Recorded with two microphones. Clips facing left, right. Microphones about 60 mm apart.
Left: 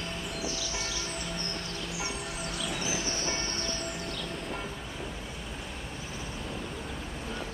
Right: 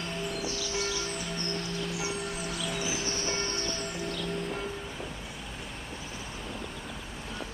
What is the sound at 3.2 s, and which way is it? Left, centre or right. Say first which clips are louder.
Music: right 1 dB; centre.